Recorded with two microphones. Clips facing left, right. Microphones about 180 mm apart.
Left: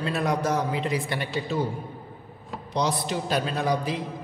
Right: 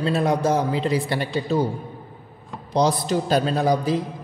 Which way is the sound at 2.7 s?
35° right (ahead or behind).